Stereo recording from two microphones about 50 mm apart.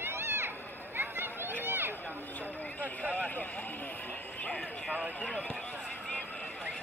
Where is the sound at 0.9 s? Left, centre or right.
Right.